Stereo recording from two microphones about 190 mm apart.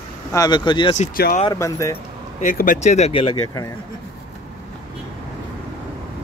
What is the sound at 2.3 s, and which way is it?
Speech, 45° left (ahead or behind).